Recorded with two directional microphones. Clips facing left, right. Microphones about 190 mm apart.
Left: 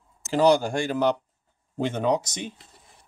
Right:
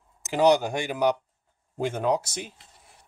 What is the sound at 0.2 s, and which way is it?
Speech, 20° right (ahead or behind).